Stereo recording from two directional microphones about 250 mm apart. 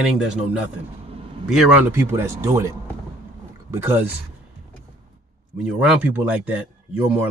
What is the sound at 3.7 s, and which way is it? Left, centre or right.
Speech, centre.